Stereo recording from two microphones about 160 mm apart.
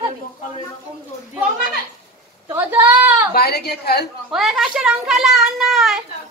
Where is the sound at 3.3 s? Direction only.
85° left.